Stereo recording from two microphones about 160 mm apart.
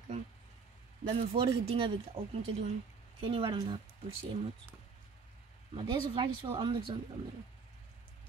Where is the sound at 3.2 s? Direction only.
35° right (ahead or behind).